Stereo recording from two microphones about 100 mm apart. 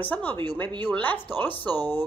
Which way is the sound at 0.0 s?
15° left (ahead or behind).